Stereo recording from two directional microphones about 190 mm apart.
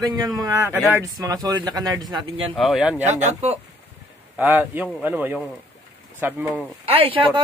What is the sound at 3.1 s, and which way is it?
Speech, 35° right (ahead or behind).